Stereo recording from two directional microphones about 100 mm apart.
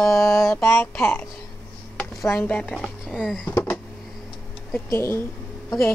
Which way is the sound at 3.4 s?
20° left (ahead or behind).